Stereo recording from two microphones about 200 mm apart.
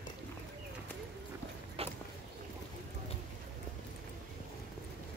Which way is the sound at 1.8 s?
30° right (ahead or behind).